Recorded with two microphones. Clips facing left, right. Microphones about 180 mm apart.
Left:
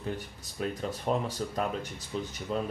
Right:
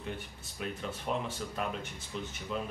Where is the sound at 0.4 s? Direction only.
40° left (ahead or behind).